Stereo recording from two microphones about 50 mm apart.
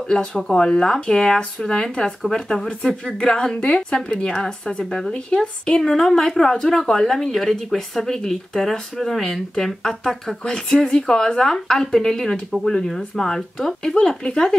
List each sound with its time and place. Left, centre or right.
0.0 s a woman's voice: centre
5.1 s a woman's voice: centre